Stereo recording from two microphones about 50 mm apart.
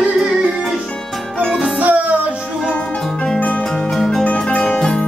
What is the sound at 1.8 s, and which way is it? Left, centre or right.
Music, right.